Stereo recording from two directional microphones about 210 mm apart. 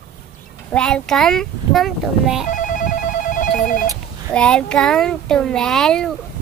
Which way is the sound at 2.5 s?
40° left (ahead or behind).